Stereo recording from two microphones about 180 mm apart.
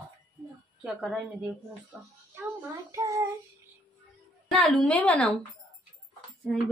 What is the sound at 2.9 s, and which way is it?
Child singing, 15° right (ahead or behind).